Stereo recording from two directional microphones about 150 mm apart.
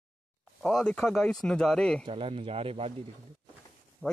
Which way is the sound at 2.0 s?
35° right (ahead or behind).